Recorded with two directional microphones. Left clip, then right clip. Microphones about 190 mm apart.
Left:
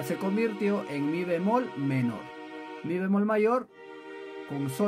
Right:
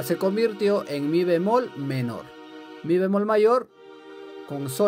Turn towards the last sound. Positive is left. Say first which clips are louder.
# right 8 dB
turn(degrees=-50)  # may be behind; listen again after turning